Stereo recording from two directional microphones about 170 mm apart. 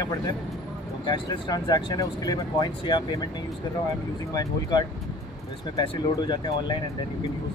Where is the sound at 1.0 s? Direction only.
25° left (ahead or behind).